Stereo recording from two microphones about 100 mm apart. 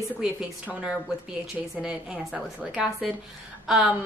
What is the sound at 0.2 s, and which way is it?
A woman's voice, 10° right (ahead or behind).